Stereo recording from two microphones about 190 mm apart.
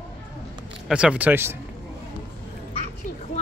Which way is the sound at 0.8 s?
5° right (ahead or behind).